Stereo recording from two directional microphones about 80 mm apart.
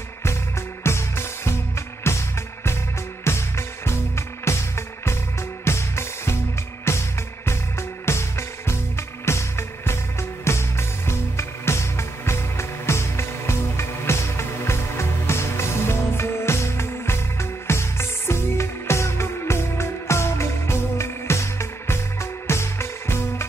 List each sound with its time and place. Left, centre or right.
0.2 s music: left
3.3 s music: left